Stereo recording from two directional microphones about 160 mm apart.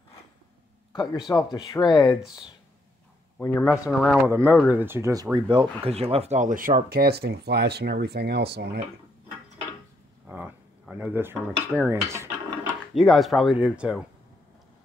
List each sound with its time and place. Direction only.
1.3 s speech: 25° left (ahead or behind)
3.3 s speech: 10° left (ahead or behind)
4.3 s speech: 15° right (ahead or behind); by 8.8 s 90° right
10.2 s speech: 10° right (ahead or behind)
12.9 s speech: centre (ahead or behind)